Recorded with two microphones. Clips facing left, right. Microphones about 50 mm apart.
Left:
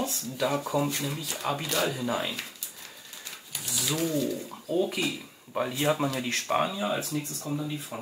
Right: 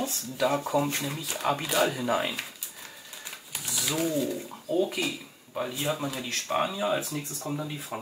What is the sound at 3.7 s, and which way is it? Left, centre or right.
Speech, centre.